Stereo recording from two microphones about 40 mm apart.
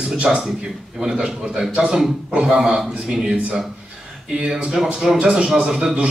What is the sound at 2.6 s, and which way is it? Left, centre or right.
Speech, centre.